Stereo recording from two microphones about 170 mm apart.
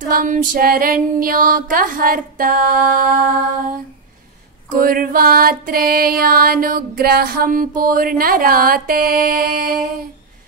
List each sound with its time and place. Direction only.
0.1 s music: 50° right (ahead or behind)
4.6 s music: 55° right (ahead or behind)